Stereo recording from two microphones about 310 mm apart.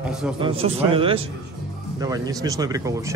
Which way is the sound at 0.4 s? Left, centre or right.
Centre.